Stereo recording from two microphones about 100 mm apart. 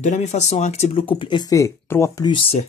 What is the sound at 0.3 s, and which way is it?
Speech, 90° left.